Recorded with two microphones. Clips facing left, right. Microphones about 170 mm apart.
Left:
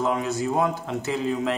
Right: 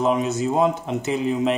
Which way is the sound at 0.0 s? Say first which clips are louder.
Right 4 dB; 20° right (ahead or behind).